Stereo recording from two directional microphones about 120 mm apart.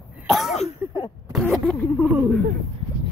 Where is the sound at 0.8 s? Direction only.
20° right (ahead or behind).